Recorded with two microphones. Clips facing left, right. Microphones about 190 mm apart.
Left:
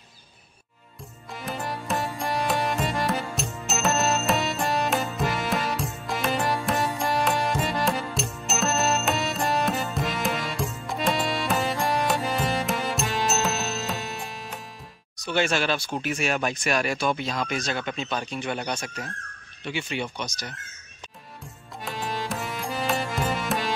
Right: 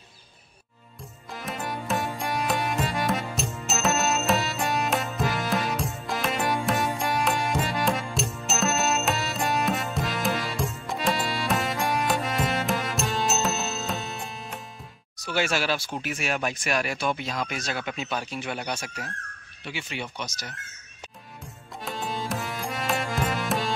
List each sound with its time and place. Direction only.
1.3 s music: centre (ahead or behind)
15.1 s speech: 5° right (ahead or behind)
16.6 s speech: 35° left (ahead or behind)
17.5 s speech: 5° right (ahead or behind)
21.8 s music: centre (ahead or behind)